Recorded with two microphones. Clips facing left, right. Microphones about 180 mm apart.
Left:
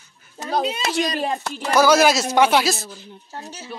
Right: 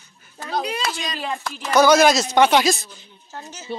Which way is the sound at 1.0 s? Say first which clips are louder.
Left 6 dB; 40° left (ahead or behind).